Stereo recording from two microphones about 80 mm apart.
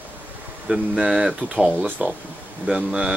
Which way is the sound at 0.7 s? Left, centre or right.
Centre.